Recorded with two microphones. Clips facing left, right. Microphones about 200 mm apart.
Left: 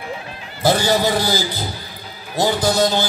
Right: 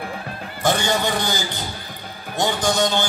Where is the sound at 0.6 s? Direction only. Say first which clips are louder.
Left 4 dB; 35° left (ahead or behind).